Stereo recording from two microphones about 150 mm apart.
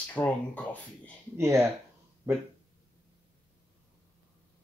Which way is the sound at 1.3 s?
20° right (ahead or behind).